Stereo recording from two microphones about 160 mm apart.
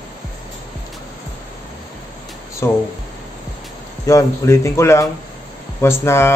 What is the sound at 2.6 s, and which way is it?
Speech, 15° left (ahead or behind).